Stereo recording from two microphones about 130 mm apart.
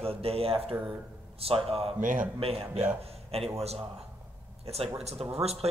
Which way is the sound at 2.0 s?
90° right.